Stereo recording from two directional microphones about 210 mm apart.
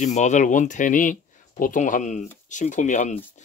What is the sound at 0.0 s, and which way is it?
Speech, 35° left (ahead or behind).